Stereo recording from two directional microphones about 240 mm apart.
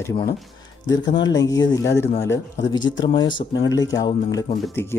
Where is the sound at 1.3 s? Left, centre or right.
Centre.